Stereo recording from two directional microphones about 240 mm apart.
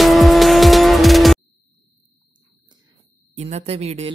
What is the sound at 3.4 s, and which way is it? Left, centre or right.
Speech, right.